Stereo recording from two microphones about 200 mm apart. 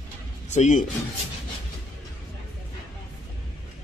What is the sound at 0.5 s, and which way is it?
Speech, 35° left (ahead or behind).